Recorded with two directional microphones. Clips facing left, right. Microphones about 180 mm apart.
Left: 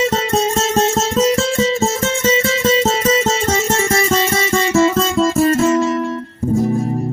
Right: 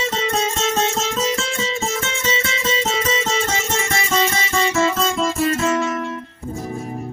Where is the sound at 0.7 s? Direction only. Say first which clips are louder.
Left 6 dB; 40° left (ahead or behind).